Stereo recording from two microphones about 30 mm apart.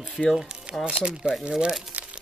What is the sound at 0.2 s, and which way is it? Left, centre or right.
Speech, left.